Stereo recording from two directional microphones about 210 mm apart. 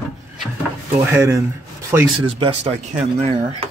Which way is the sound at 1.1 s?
15° right (ahead or behind).